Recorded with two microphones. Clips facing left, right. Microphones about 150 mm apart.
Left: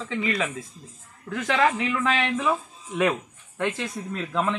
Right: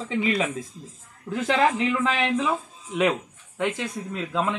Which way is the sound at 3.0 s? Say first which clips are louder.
Right 1 dB; 15° right (ahead or behind).